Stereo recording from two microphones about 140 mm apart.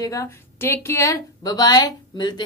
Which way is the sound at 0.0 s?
25° left (ahead or behind).